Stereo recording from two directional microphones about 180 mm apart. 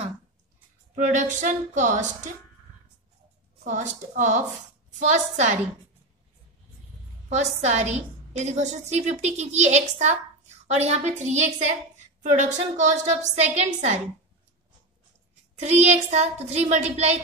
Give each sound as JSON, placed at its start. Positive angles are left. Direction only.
{"t": 0.9, "sound": "a woman's voice", "side_deg": -40}
{"t": 3.6, "sound": "a woman's voice", "side_deg": -40}
{"t": 7.2, "sound": "a woman's voice", "side_deg": -35}
{"t": 15.5, "sound": "a woman's voice", "side_deg": -40}